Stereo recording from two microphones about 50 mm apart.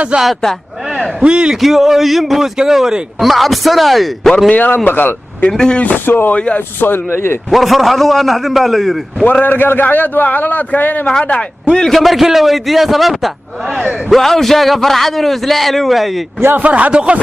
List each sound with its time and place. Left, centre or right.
0.1 s a man's voice: right
1.5 s a man's voice: centre
4.5 s a man's voice: left
4.8 s a man's voice: left
5.5 s speech: centre
6.0 s speech: left
6.3 s a man's voice: left
6.8 s speech: left
7.5 s a man's voice: centre
9.4 s a man's voice: left
11.7 s a man's voice: centre
16.5 s speech: right
16.9 s a man's voice: right